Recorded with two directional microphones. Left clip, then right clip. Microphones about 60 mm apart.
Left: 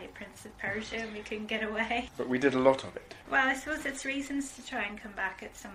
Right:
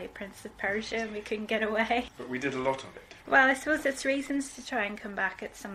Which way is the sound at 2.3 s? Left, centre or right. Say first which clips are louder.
Left 6 dB; left.